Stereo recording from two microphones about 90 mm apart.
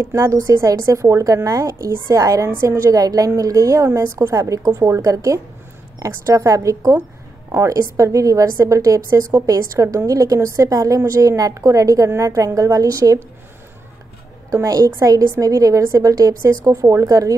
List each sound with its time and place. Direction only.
0.0 s a woman's voice: 30° right (ahead or behind)
14.5 s a woman's voice: 40° right (ahead or behind)